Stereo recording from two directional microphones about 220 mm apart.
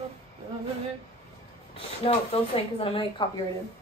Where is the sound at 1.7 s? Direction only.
25° left (ahead or behind).